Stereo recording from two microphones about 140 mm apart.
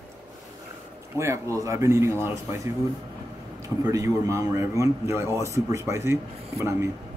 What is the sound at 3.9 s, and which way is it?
A man's voice, 25° right (ahead or behind).